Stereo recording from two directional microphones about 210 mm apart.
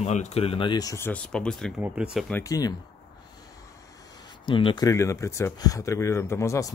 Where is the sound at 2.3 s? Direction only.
15° left (ahead or behind).